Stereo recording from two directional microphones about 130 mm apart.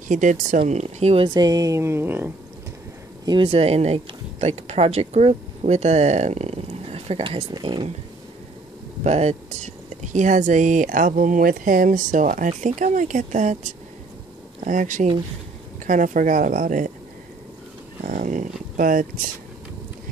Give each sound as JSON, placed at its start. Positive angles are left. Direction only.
{"t": 0.1, "sound": "speech", "side_deg": -70}
{"t": 1.2, "sound": "a woman's voice", "side_deg": -30}
{"t": 3.3, "sound": "speech", "side_deg": -40}
{"t": 7.5, "sound": "speech", "side_deg": -35}
{"t": 9.0, "sound": "speech", "side_deg": -55}
{"t": 14.6, "sound": "a woman's voice", "side_deg": -80}
{"t": 18.0, "sound": "a sound", "side_deg": -80}